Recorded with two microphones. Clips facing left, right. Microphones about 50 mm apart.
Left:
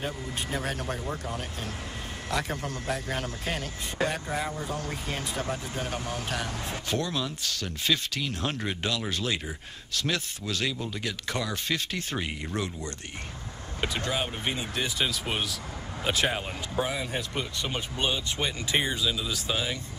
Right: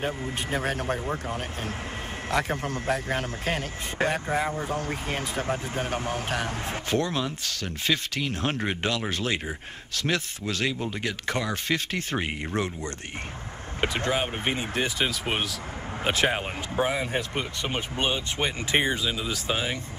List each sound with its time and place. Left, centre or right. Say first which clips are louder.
0.0 s speech: right 4 dB; right